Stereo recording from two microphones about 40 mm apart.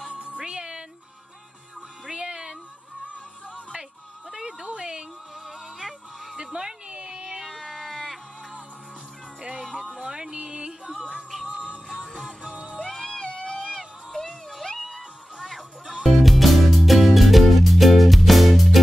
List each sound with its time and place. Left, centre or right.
0.2 s music: centre
2.0 s music: right
4.3 s music: centre
5.8 s music: centre
6.3 s a sound: centre
7.3 s a sound: centre
9.4 s music: right
12.2 s music: centre
13.0 s music: centre
14.1 s a sound: centre
15.3 s music: centre